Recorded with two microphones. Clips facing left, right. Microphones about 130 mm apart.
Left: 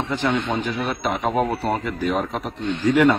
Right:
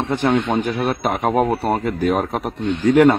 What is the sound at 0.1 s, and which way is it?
Speech, 50° right (ahead or behind).